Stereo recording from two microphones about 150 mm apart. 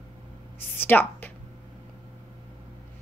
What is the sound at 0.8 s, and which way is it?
Speech, 10° left (ahead or behind).